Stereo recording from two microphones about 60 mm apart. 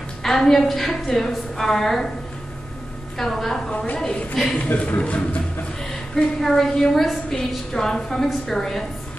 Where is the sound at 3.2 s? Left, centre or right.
Centre.